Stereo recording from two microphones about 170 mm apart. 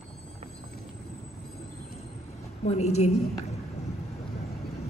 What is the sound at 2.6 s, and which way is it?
Speech, 40° left (ahead or behind).